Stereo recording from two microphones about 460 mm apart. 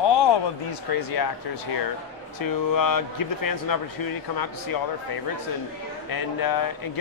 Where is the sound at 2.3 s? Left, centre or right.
Left.